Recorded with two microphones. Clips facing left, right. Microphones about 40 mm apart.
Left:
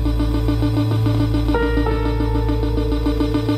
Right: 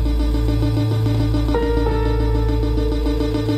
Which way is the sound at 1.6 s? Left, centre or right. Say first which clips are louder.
Even; left.